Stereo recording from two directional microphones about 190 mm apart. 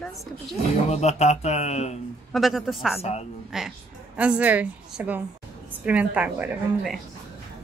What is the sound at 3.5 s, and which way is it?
A woman's voice, 5° right (ahead or behind).